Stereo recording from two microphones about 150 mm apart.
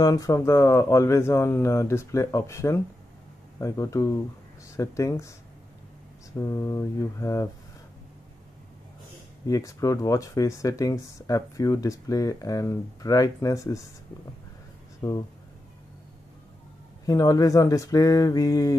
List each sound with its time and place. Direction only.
0.0 s speech: 20° left (ahead or behind)
6.3 s speech: 20° left (ahead or behind)
9.5 s speech: 20° left (ahead or behind)
15.0 s speech: 30° left (ahead or behind)
17.0 s speech: 25° left (ahead or behind)